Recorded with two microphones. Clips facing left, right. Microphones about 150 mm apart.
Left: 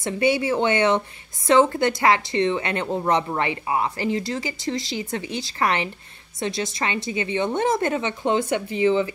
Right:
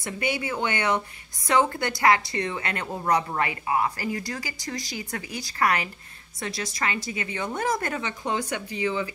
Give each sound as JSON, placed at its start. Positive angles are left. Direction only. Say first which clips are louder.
{"t": 0.0, "sound": "a woman's voice", "louder": "left 8 dB", "side_deg": 25}